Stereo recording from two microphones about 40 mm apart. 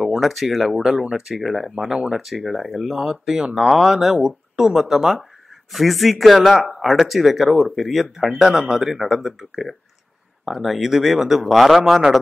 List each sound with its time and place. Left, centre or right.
0.0 s speech: centre